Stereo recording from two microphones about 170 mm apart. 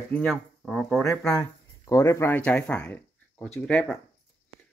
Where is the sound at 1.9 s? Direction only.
15° left (ahead or behind).